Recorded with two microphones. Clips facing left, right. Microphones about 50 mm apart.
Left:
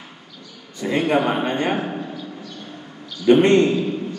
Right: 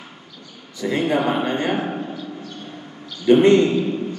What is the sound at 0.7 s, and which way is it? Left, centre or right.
A man's voice, left.